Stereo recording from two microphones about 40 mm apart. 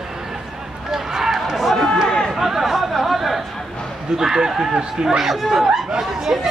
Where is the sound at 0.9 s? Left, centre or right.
Centre.